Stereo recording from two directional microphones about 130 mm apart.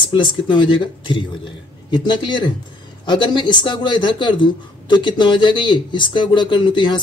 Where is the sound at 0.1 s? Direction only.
40° left (ahead or behind).